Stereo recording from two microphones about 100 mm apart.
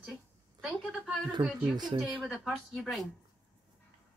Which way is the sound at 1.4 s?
75° right (ahead or behind).